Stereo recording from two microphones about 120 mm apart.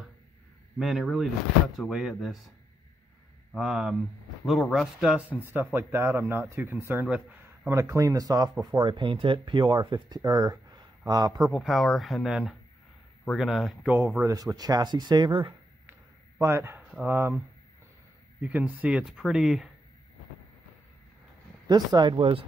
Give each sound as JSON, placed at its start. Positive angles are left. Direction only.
{"t": 0.7, "sound": "speech", "side_deg": 0}
{"t": 3.5, "sound": "speech", "side_deg": -5}
{"t": 7.7, "sound": "speech", "side_deg": -25}
{"t": 11.4, "sound": "speech", "side_deg": 0}
{"t": 13.8, "sound": "speech", "side_deg": -20}
{"t": 14.2, "sound": "speech", "side_deg": -30}
{"t": 15.9, "sound": "a sound", "side_deg": -20}
{"t": 17.0, "sound": "speech", "side_deg": -15}
{"t": 18.4, "sound": "speech", "side_deg": -15}
{"t": 21.6, "sound": "speech", "side_deg": -35}